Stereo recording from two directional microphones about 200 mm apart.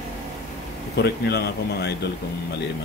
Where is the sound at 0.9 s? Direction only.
55° left (ahead or behind).